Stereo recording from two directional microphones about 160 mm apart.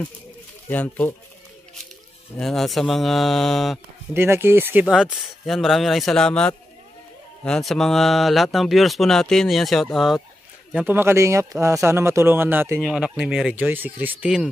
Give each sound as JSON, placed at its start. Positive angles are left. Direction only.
{"t": 0.7, "sound": "speech", "side_deg": 10}
{"t": 2.3, "sound": "speech", "side_deg": 0}
{"t": 4.1, "sound": "speech", "side_deg": -15}